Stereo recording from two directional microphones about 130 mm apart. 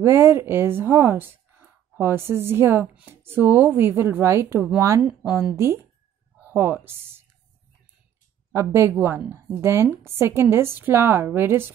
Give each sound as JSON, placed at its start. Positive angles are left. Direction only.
{"t": 0.0, "sound": "a woman's voice", "side_deg": -20}
{"t": 8.5, "sound": "a woman's voice", "side_deg": -20}